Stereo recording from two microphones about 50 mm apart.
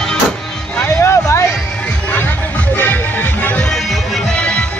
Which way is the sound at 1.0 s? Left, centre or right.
Left.